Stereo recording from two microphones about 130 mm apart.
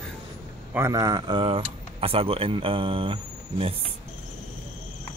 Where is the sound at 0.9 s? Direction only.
30° right (ahead or behind).